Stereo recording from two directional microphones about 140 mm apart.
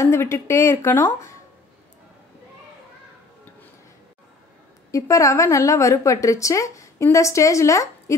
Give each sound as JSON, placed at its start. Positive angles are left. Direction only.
{"t": 0.0, "sound": "a woman's voice", "side_deg": 20}
{"t": 4.9, "sound": "a woman's voice", "side_deg": 20}